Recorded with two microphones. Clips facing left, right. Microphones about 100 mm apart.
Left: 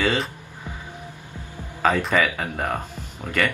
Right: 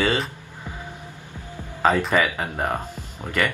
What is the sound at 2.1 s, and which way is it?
Speech, 25° right (ahead or behind).